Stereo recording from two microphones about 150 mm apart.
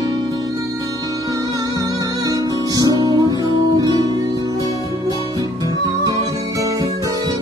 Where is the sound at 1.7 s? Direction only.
25° right (ahead or behind).